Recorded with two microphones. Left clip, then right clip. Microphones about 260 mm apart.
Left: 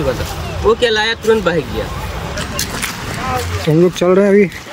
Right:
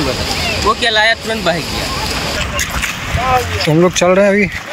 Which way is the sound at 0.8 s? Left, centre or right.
Centre.